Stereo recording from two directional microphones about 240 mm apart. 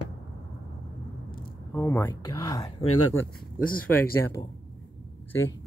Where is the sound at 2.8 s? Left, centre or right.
Left.